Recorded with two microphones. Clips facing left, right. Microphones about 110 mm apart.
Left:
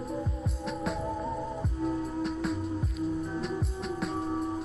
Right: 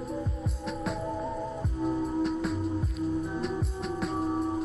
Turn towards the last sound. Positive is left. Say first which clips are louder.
# right 2 dB
turn(degrees=0)  # may be behind; listen again after turning